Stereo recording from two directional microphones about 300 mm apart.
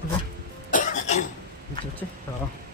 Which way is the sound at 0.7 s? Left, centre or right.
Left.